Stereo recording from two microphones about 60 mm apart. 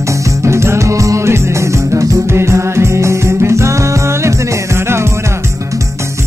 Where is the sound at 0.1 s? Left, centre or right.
Right.